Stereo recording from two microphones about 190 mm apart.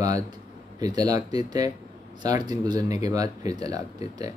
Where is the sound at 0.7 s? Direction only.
20° right (ahead or behind).